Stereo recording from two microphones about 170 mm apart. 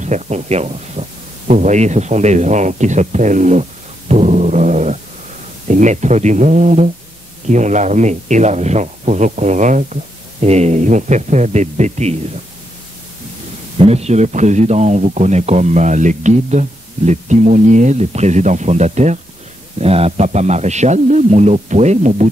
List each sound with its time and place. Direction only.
0.0 s a man's voice: 45° right (ahead or behind)
4.1 s dog: 40° right (ahead or behind)
5.7 s speech: 45° right (ahead or behind)
13.7 s a man's voice: 40° right (ahead or behind)